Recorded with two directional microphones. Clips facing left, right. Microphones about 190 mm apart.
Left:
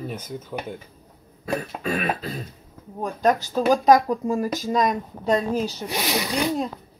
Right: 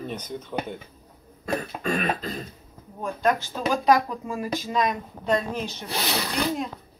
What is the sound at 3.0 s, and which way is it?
Speech, 40° left (ahead or behind).